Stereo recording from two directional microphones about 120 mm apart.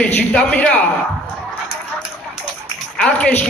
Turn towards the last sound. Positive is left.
turn(degrees=10)  # may be behind; listen again after turning